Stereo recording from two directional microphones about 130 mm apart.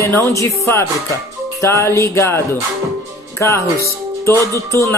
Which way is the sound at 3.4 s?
20° left (ahead or behind).